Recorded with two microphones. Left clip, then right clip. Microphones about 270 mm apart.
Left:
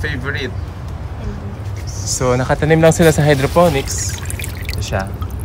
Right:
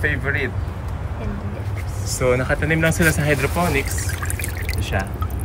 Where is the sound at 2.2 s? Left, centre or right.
Centre.